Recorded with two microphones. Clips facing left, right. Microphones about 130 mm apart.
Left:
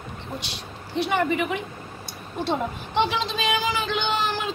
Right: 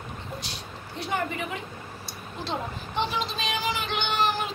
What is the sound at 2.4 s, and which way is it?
Speech, 85° left.